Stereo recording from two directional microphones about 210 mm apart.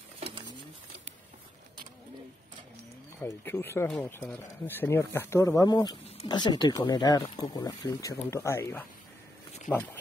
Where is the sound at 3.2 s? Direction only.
10° left (ahead or behind).